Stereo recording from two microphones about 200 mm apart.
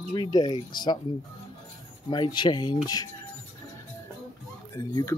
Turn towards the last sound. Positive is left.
turn(degrees=15)  # may be behind; listen again after turning